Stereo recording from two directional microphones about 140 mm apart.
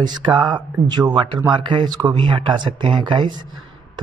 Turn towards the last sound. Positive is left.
turn(degrees=-35)  # may be behind; listen again after turning